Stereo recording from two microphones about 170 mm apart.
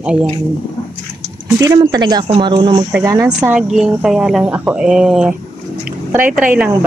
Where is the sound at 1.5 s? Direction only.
20° right (ahead or behind).